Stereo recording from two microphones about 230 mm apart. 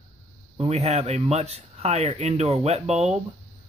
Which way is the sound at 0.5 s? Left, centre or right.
Right.